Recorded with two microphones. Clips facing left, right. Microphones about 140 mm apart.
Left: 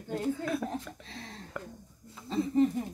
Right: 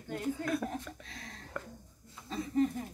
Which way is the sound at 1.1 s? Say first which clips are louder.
Left 4 dB; 30° left (ahead or behind).